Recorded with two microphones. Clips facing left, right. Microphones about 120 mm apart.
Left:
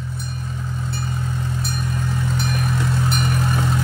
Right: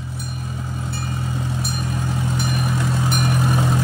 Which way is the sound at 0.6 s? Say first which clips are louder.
Left 1 dB; 25° right (ahead or behind).